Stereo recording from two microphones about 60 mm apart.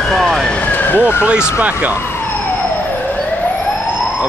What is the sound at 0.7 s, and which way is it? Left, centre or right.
Police car, left.